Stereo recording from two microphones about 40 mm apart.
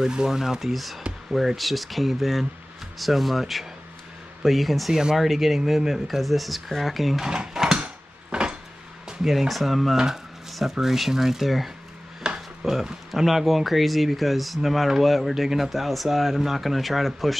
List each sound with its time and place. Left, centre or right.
0.0 s speech: centre
7.2 s drawer open or close: centre
7.8 s a sound: right
9.0 s speech: centre
12.2 s a sound: centre
12.6 s speech: centre